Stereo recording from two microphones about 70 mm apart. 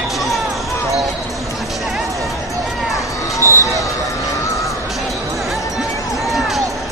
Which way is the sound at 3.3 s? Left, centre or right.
Left.